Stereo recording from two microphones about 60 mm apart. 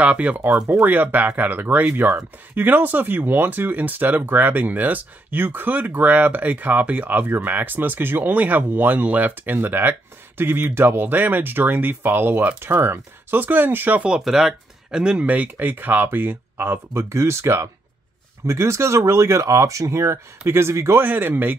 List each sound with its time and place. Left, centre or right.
0.0 s speech: right
14.2 s speech: centre
15.2 s speech: right
21.0 s speech: right